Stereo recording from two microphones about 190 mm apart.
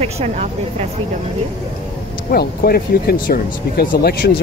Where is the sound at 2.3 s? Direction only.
50° left (ahead or behind).